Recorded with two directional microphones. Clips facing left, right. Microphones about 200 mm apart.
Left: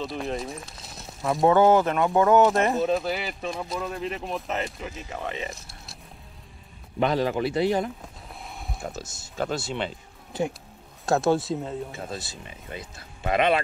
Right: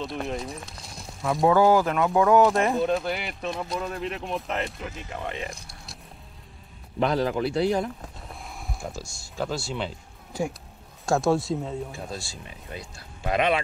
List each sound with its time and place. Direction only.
0.0 s speech: centre (ahead or behind)
1.7 s speech: 20° left (ahead or behind)
2.0 s speech: centre (ahead or behind)
7.0 s speech: centre (ahead or behind)
8.5 s a sound: centre (ahead or behind)
8.9 s speech: 20° left (ahead or behind)
9.8 s a sound: centre (ahead or behind)
11.1 s speech: centre (ahead or behind)